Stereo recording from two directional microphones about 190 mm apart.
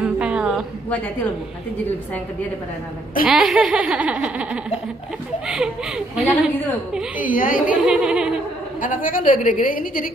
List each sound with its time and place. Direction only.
0.0 s a sound: 5° right (ahead or behind)
3.3 s speech: 5° right (ahead or behind)
7.2 s a woman's voice: 45° left (ahead or behind)
7.6 s speech: 5° right (ahead or behind)
8.8 s a woman's voice: 45° left (ahead or behind)